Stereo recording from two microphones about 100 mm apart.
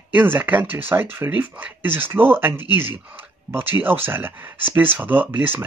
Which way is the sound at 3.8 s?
20° right (ahead or behind).